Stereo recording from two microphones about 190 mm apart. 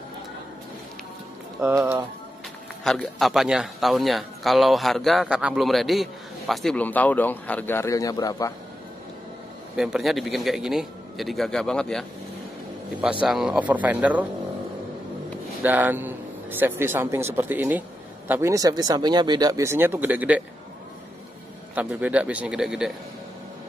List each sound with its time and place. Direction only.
1.6 s speech: 10° right (ahead or behind)
2.8 s a man's voice: 5° left (ahead or behind); by 8.5 s 20° left (ahead or behind)
9.8 s a man's voice: centre (ahead or behind)
13.2 s speech: 5° right (ahead or behind)
15.6 s a man's voice: 10° right (ahead or behind)
21.7 s speech: 5° right (ahead or behind)